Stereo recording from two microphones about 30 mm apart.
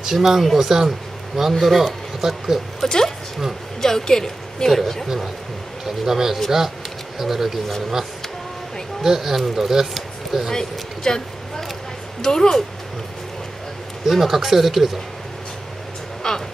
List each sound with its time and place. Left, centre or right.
0.0 s speech: centre
2.8 s a woman's voice: centre
5.0 s speech: centre
9.0 s speech: centre
9.9 s a sound: centre
10.5 s a woman's voice: centre
14.0 s speech: centre
16.2 s a sound: centre